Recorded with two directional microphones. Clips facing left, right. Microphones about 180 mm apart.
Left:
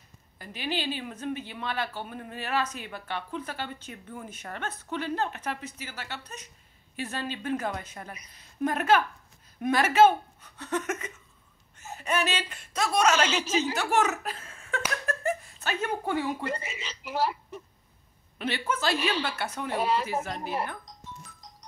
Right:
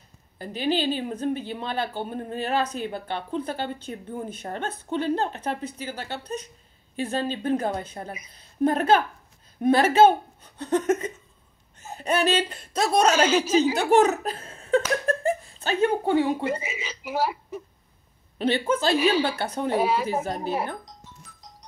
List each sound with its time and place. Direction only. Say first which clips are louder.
0.4 s speech: right 8 dB; 30° right (ahead or behind)
15.0 s giggle: right 6 dB; 30° right (ahead or behind)
16.4 s speech: right 5 dB; 5° right (ahead or behind)
18.4 s speech: right 7 dB; 30° right (ahead or behind)
19.8 s speech: right 1 dB; 5° right (ahead or behind)